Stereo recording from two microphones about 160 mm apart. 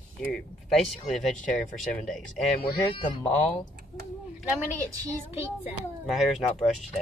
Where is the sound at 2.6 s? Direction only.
30° left (ahead or behind).